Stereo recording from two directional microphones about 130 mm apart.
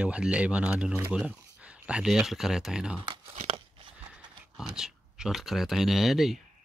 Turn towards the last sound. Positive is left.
turn(degrees=0)  # may be behind; listen again after turning